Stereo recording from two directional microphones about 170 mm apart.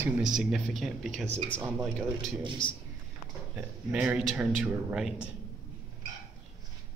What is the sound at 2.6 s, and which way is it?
Speech, 30° left (ahead or behind).